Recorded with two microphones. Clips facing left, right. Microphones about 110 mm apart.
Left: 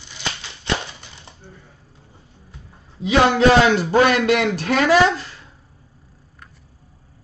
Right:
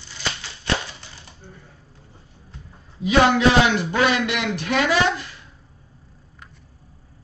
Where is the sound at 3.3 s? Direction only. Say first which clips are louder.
Left 3 dB; 35° left (ahead or behind).